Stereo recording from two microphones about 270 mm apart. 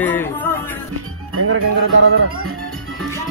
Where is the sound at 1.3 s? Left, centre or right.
Right.